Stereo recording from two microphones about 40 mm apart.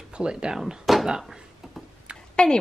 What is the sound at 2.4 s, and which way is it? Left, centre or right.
Speech, left.